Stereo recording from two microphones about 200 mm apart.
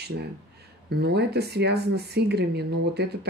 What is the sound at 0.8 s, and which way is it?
Speech, 55° right (ahead or behind).